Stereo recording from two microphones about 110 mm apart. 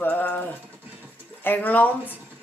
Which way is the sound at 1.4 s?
15° left (ahead or behind).